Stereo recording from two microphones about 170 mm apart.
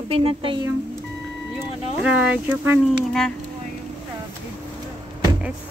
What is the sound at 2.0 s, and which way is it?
Speech, 5° right (ahead or behind).